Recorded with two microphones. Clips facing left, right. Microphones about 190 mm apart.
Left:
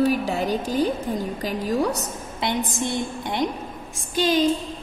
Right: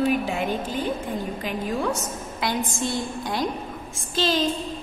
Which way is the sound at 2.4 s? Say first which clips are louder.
Left 1 dB; 20° left (ahead or behind).